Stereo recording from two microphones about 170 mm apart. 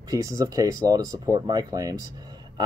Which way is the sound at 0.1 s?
20° right (ahead or behind).